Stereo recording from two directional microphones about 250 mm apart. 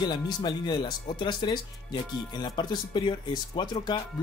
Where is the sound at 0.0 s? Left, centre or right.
Centre.